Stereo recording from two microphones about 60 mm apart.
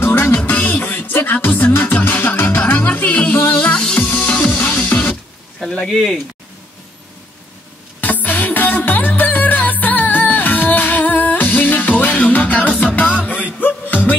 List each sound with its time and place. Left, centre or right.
0.0 s music: left
5.9 s speech: centre
8.0 s music: left